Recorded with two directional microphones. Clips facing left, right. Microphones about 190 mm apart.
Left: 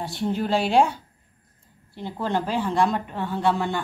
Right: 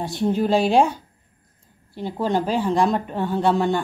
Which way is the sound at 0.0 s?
15° right (ahead or behind).